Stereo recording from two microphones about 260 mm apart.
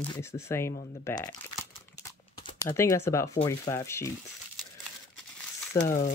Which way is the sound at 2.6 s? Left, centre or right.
Centre.